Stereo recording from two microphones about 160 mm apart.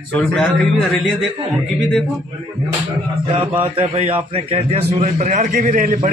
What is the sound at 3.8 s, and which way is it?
A man's voice, 40° right (ahead or behind).